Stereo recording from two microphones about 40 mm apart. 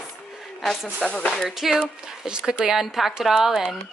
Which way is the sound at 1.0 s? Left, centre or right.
Left.